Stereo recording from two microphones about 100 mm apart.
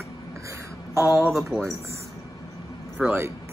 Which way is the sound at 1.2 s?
Centre (ahead or behind).